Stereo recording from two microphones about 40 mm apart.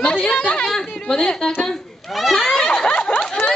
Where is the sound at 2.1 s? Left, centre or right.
Centre.